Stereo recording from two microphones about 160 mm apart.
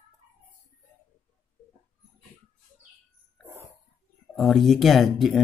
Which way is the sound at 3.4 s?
15° right (ahead or behind).